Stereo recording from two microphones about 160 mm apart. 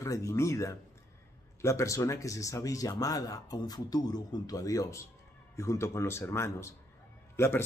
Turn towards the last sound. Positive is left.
turn(degrees=15)  # may be behind; listen again after turning